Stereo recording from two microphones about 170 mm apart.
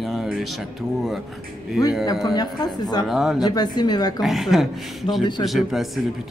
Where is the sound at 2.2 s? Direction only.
25° left (ahead or behind).